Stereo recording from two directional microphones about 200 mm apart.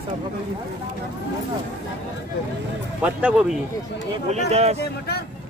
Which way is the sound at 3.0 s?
5° right (ahead or behind).